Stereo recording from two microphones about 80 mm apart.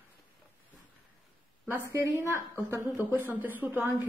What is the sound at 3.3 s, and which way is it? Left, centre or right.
Speech, right.